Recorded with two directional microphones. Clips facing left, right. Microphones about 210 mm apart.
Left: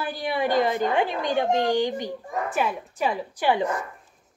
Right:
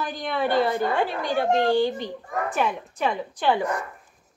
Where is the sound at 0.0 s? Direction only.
10° left (ahead or behind).